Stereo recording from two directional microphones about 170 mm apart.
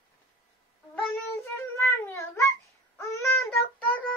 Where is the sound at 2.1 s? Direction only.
15° left (ahead or behind).